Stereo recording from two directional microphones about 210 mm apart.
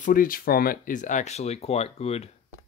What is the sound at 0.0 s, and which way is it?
Speech, 40° left (ahead or behind).